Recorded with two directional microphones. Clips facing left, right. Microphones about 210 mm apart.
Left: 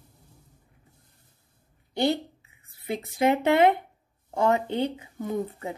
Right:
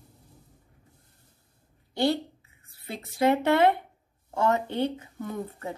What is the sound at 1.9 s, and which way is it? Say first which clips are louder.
A woman's voice: even; 15° left (ahead or behind).